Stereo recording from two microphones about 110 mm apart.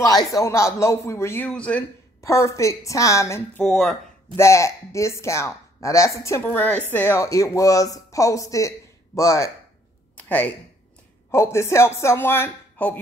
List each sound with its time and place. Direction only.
0.0 s speech: 35° left (ahead or behind); by 1.9 s 10° left (ahead or behind)
2.2 s speech: 25° left (ahead or behind)
3.6 s speech: 5° left (ahead or behind)
4.4 s speech: 25° left (ahead or behind)
10.1 s a sound: 15° left (ahead or behind)
11.3 s speech: 25° left (ahead or behind)